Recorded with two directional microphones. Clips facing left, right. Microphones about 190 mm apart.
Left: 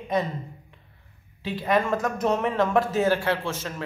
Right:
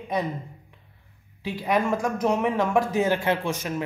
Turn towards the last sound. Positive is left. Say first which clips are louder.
# right 3 dB
turn(degrees=-15)  # may be behind; listen again after turning